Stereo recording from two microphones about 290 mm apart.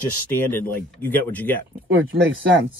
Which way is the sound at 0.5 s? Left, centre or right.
Centre.